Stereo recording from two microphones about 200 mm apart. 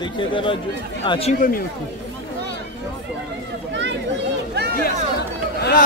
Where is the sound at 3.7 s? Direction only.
65° right (ahead or behind).